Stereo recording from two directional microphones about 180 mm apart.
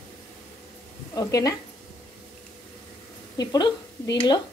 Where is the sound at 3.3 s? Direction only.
20° left (ahead or behind).